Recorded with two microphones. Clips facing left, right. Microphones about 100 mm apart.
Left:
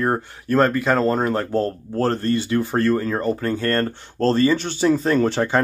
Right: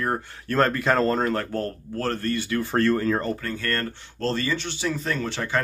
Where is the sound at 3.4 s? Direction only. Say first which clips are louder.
Left 7 dB; 30° left (ahead or behind).